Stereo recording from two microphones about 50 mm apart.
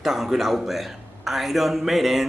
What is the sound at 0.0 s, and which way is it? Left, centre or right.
A man's voice, centre.